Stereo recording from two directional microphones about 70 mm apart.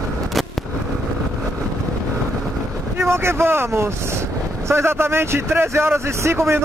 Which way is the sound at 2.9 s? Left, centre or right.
Right.